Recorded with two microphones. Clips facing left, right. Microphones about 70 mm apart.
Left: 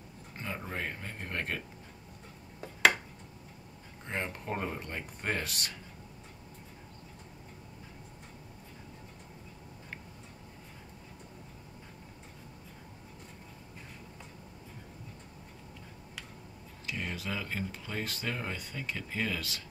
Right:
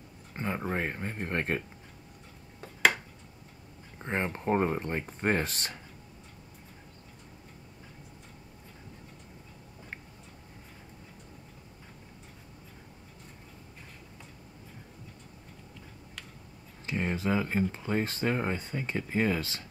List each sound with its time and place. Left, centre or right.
0.4 s speech: right
4.0 s speech: right
16.8 s speech: right